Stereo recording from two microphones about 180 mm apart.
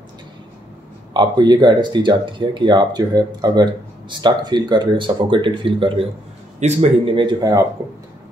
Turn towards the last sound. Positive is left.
turn(degrees=-20)  # may be behind; listen again after turning